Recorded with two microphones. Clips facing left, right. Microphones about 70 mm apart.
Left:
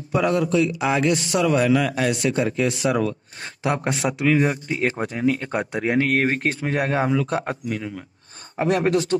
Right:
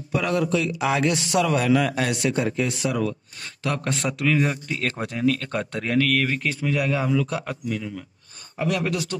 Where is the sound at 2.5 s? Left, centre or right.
Left.